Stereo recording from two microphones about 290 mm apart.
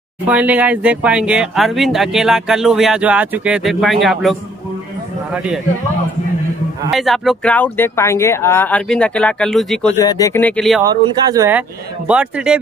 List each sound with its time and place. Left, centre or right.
0.3 s speech: centre
6.9 s speech: centre
10.8 s speech: centre